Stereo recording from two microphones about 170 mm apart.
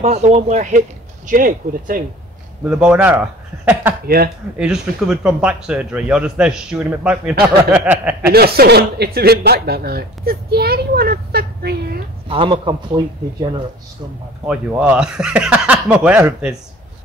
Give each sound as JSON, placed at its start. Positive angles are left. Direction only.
{"t": 0.0, "sound": "speech", "side_deg": -40}
{"t": 2.6, "sound": "speech", "side_deg": -10}
{"t": 8.3, "sound": "a man's voice", "side_deg": -65}
{"t": 12.3, "sound": "a man's voice", "side_deg": -30}
{"t": 14.4, "sound": "speech", "side_deg": -10}